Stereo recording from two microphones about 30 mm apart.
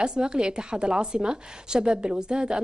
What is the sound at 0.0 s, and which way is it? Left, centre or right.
A woman's voice, right.